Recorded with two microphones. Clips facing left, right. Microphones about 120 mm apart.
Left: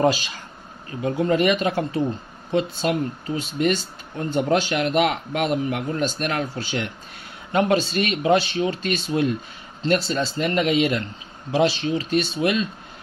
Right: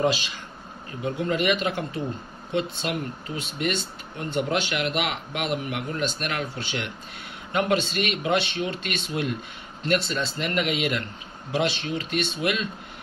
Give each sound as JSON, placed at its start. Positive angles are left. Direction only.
{"t": 0.0, "sound": "a man's voice", "side_deg": 40}
{"t": 4.2, "sound": "a man's voice", "side_deg": 40}